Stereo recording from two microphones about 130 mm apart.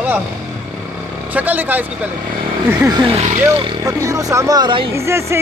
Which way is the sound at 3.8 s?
25° right (ahead or behind).